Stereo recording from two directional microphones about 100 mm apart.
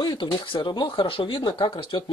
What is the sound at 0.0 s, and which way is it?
Speech, 45° left (ahead or behind).